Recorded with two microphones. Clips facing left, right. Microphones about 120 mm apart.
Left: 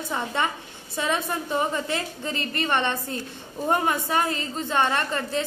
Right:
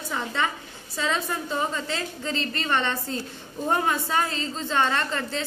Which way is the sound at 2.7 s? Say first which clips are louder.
Left 1 dB; 15° left (ahead or behind).